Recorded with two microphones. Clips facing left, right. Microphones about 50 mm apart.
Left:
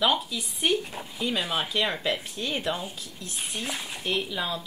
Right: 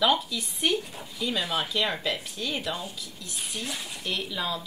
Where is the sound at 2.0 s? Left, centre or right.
Left.